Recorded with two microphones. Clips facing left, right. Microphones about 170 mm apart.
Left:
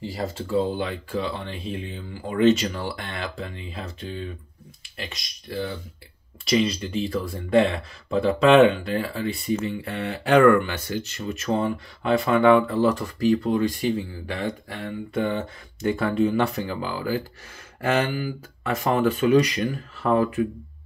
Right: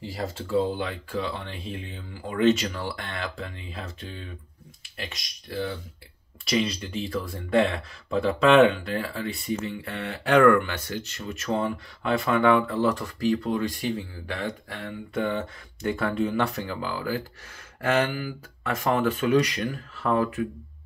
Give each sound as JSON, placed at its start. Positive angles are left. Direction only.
{"t": 0.5, "sound": "speech", "side_deg": 0}
{"t": 4.9, "sound": "speech", "side_deg": 0}